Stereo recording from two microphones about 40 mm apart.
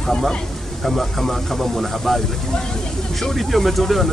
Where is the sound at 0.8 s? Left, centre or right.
Centre.